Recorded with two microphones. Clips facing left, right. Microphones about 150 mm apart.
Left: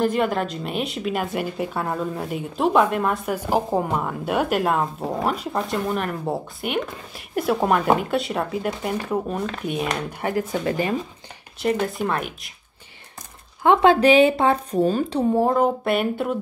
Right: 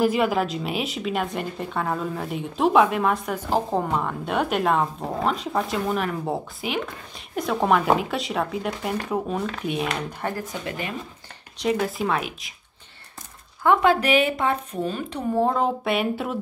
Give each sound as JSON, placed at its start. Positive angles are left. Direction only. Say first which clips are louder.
{"t": 0.0, "sound": "a woman's voice", "louder": "even", "side_deg": -5}
{"t": 9.8, "sound": "speech", "louder": "left 2 dB", "side_deg": 15}
{"t": 11.8, "sound": "a woman's voice", "louder": "even", "side_deg": 0}
{"t": 13.6, "sound": "speech", "louder": "left 3 dB", "side_deg": 25}
{"t": 15.3, "sound": "a woman's voice", "louder": "left 1 dB", "side_deg": 5}